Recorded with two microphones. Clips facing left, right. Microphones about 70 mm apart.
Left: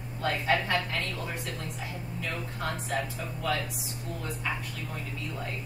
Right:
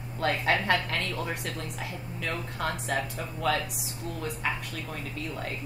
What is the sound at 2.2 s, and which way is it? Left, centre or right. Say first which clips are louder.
Speech: right 3 dB; right.